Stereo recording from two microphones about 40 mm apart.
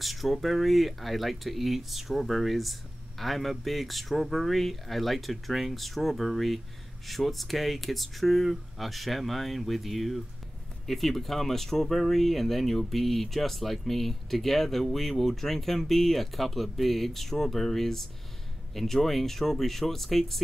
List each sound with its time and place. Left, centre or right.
0.0 s speech: centre